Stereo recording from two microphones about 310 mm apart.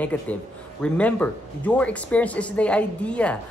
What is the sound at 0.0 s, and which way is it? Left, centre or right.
Speech, centre.